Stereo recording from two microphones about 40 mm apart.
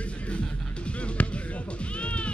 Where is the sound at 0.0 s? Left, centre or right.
Left.